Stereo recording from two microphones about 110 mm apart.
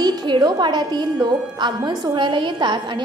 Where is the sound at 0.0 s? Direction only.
40° right (ahead or behind).